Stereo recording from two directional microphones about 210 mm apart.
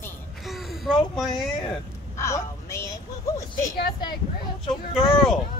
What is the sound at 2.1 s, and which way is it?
Speech, 15° left (ahead or behind).